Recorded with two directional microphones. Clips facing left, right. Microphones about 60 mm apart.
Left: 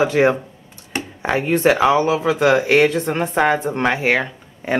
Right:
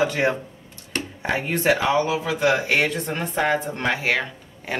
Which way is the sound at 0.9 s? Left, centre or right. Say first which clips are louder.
Left 3 dB; centre.